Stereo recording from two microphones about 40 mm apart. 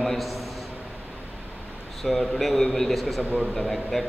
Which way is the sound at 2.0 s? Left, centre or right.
Centre.